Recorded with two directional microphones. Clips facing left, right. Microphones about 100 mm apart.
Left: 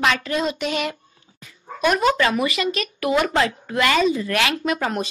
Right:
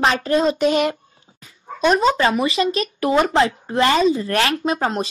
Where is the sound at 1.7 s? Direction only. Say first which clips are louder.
Right 2 dB; 25° right (ahead or behind).